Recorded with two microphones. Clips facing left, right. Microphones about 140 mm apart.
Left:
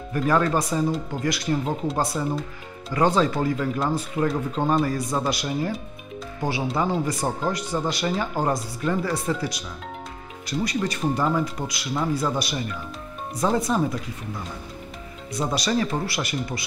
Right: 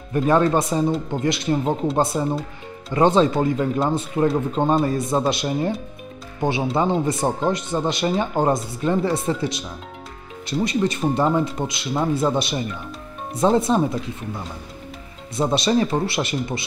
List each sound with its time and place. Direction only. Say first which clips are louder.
0.1 s speech: right 4 dB; 25° right (ahead or behind)
15.3 s speech: right 5 dB; 25° right (ahead or behind)